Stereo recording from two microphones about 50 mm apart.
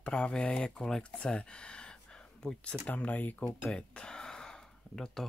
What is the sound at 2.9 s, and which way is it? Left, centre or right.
Speech, left.